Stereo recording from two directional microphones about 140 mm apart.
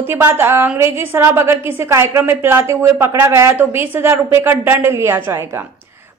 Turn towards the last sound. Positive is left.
turn(degrees=-15)  # may be behind; listen again after turning